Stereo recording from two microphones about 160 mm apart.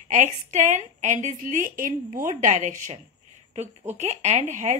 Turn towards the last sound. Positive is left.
turn(degrees=-50)  # may be behind; listen again after turning